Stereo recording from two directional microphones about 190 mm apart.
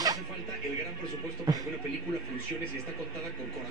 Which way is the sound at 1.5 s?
20° right (ahead or behind).